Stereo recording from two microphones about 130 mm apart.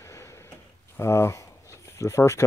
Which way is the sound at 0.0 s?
20° left (ahead or behind).